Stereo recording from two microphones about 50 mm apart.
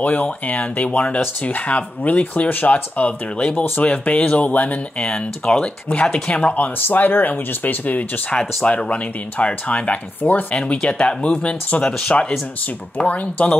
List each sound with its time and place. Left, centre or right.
0.0 s speech: left
5.0 s speech: centre
6.3 s speech: left
8.6 s speech: left
10.5 s speech: centre